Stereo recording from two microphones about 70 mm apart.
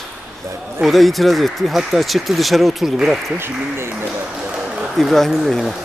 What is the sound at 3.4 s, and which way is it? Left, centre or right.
Speech, right.